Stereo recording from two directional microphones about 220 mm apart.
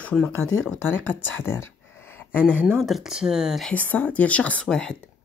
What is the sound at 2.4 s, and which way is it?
Speech, 10° right (ahead or behind).